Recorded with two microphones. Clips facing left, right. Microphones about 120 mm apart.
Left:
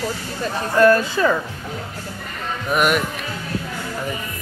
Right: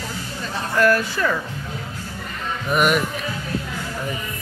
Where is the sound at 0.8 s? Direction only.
25° left (ahead or behind).